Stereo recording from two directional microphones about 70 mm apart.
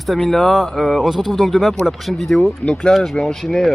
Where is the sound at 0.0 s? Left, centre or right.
Centre.